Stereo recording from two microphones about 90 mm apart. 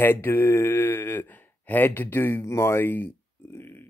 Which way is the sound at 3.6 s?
25° left (ahead or behind).